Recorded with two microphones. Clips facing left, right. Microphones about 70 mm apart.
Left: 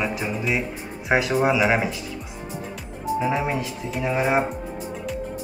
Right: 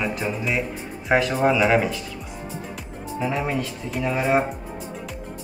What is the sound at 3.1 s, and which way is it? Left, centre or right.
Speech, centre.